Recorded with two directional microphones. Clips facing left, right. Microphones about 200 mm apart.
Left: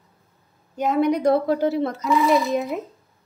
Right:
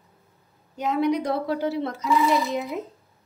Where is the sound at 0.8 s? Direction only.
50° left (ahead or behind).